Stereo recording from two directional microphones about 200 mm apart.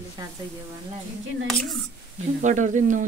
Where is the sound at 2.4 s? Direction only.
40° right (ahead or behind).